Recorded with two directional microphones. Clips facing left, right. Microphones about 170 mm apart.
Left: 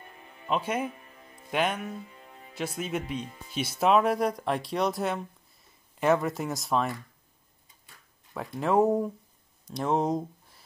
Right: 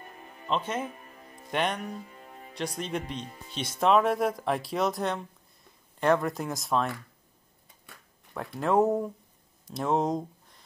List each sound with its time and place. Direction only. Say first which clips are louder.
0.0 s music: right 3 dB; 45° right (ahead or behind)
0.5 s speech: left 1 dB; 10° left (ahead or behind)
0.9 s music: right 2 dB; 45° right (ahead or behind)
1.5 s speech: left 1 dB; 5° left (ahead or behind)
2.0 s music: right 1 dB; 45° right (ahead or behind)
2.5 s speech: left 1 dB; 5° left (ahead or behind)
8.5 s speech: left 1 dB; centre (ahead or behind)